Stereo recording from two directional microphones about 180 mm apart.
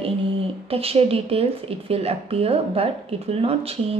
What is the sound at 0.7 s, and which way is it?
A woman's voice, 35° right (ahead or behind).